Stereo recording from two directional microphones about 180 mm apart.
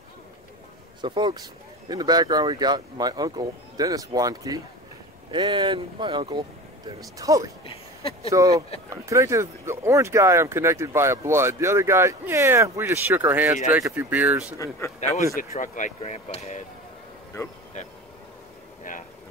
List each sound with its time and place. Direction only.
1.0 s speech: 25° right (ahead or behind)
7.6 s a sound: 30° left (ahead or behind)
8.3 s speech: 20° right (ahead or behind)
15.5 s speech: 45° left (ahead or behind)